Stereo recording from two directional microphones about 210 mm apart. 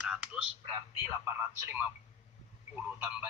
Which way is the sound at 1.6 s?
10° right (ahead or behind).